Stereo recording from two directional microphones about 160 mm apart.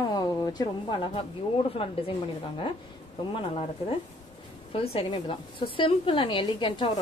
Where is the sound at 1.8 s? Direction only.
35° left (ahead or behind).